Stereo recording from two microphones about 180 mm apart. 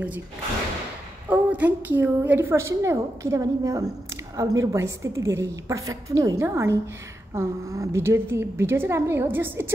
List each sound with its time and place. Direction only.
1.3 s a woman's voice: 10° right (ahead or behind)